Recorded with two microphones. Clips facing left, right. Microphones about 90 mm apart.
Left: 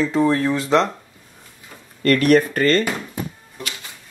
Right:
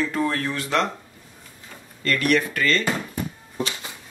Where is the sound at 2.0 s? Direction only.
45° left (ahead or behind).